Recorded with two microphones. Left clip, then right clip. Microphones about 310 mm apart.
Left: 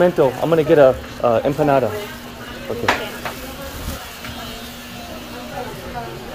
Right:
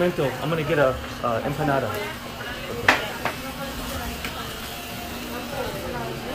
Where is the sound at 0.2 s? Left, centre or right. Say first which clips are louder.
Left 10 dB; centre.